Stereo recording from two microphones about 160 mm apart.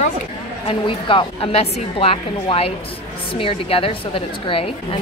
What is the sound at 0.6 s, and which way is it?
Speech, 30° left (ahead or behind).